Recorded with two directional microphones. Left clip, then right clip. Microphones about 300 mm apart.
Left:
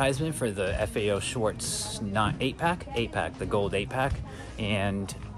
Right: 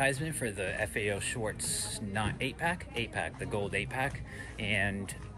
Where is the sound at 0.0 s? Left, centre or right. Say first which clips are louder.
Left 4 dB; centre.